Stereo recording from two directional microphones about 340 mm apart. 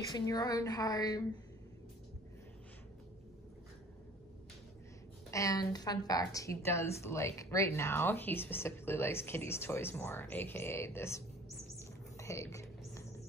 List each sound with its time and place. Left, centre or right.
0.1 s speech: centre
5.3 s speech: centre
11.8 s rodents: centre